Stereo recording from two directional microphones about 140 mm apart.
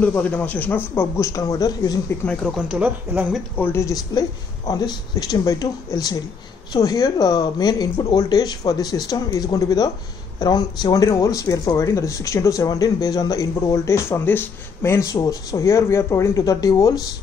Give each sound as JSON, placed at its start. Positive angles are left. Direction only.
{"t": 0.0, "sound": "a man's voice", "side_deg": 10}
{"t": 2.2, "sound": "speech", "side_deg": 0}
{"t": 3.5, "sound": "speech", "side_deg": 15}